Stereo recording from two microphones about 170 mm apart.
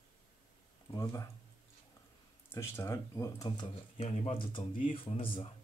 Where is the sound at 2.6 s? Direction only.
15° left (ahead or behind).